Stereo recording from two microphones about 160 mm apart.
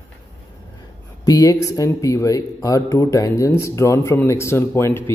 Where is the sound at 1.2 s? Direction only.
25° left (ahead or behind).